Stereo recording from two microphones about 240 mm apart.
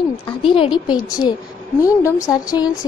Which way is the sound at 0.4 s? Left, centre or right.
Centre.